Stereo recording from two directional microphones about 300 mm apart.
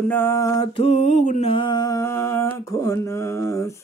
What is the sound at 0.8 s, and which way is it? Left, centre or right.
Mantra, left.